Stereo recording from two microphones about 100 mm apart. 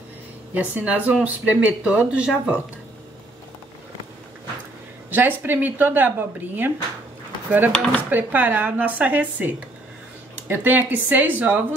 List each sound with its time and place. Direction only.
0.6 s speech: 15° right (ahead or behind)
5.1 s speech: 20° right (ahead or behind)
7.7 s speech: 10° left (ahead or behind)
8.1 s speech: 15° right (ahead or behind)
10.5 s speech: 20° right (ahead or behind)